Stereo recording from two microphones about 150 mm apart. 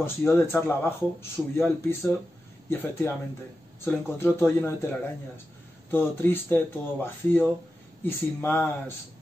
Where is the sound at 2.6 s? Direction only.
15° left (ahead or behind).